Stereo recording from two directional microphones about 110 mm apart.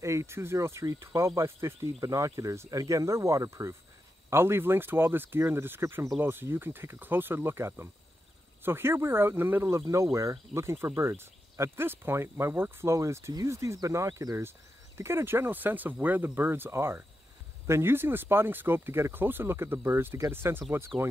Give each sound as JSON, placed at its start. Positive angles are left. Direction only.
{"t": 0.0, "sound": "speech", "side_deg": -25}